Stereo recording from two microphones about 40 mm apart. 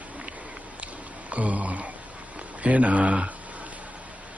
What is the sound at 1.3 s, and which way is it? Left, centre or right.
Speech, right.